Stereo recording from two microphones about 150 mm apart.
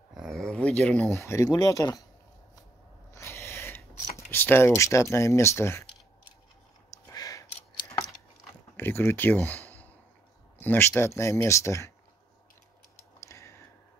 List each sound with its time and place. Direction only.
0.1 s speech: centre (ahead or behind); by 2.0 s 20° left (ahead or behind)
3.1 s gasp: 20° left (ahead or behind)
4.3 s speech: 15° left (ahead or behind)
6.9 s a sound: 20° left (ahead or behind)
8.7 s speech: 15° left (ahead or behind)
13.2 s a sound: 20° left (ahead or behind)